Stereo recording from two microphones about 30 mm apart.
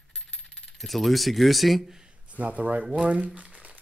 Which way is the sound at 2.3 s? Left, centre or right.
Right.